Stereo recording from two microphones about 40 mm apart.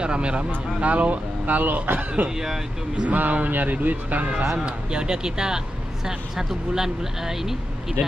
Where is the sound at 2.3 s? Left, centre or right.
Centre.